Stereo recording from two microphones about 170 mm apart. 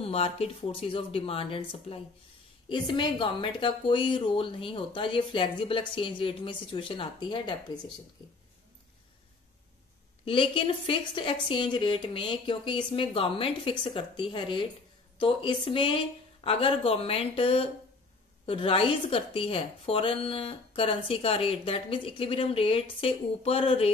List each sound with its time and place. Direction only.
0.0 s a woman's voice: 35° left (ahead or behind)
10.2 s speech: 30° left (ahead or behind)